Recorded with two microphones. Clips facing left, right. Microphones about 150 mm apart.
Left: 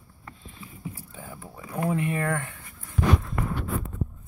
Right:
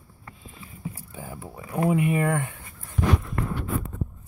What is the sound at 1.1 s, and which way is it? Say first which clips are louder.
Speech: right 3 dB; 10° right (ahead or behind).